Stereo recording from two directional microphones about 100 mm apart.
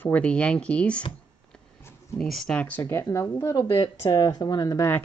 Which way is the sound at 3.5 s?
55° left (ahead or behind).